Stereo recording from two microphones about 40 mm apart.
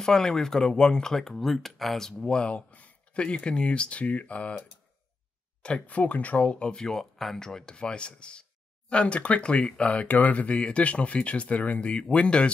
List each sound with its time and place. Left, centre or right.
0.0 s speech: centre
1.1 s speech: centre
2.2 s speech: left
2.7 s a sound: left
3.4 s speech: left
5.6 s speech: left
6.8 s speech: centre